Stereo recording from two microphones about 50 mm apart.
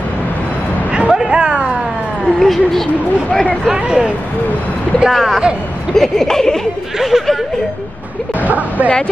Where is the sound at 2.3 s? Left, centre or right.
Centre.